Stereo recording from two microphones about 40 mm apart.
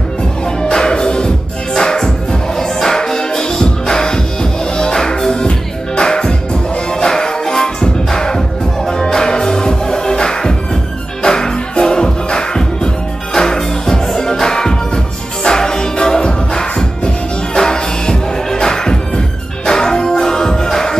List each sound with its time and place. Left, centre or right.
0.6 s music: centre